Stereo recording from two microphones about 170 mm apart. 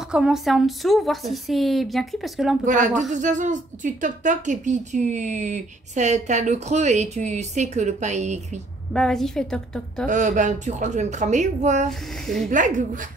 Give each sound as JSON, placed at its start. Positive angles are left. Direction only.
{"t": 0.1, "sound": "a woman's voice", "side_deg": -5}
{"t": 2.6, "sound": "a woman's voice", "side_deg": -50}
{"t": 8.9, "sound": "a woman's voice", "side_deg": 5}
{"t": 10.0, "sound": "a woman's voice", "side_deg": -50}